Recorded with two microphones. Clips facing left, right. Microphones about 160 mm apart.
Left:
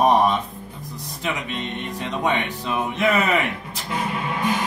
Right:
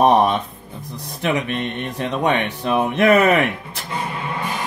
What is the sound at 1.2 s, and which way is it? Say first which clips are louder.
Speech: right 6 dB; 65° right (ahead or behind).